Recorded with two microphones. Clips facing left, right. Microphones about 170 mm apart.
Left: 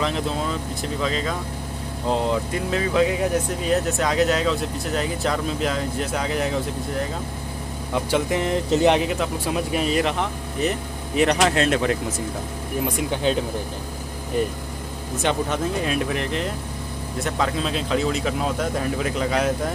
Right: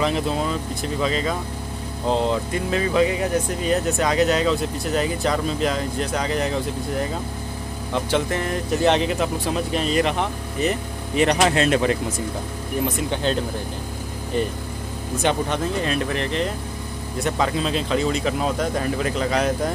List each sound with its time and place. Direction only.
0.0 s speech: 5° right (ahead or behind)
2.7 s speech: centre (ahead or behind); by 8.9 s 20° left (ahead or behind)
9.5 s speech: 10° left (ahead or behind)
12.8 s speech: 10° left (ahead or behind)
15.2 s speech: 5° left (ahead or behind)